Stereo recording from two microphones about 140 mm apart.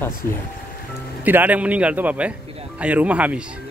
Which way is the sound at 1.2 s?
10° right (ahead or behind).